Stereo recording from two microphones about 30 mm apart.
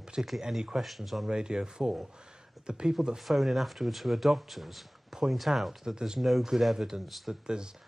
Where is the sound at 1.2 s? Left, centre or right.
Right.